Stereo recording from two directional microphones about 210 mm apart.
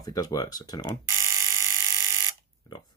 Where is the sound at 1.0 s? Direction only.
10° right (ahead or behind).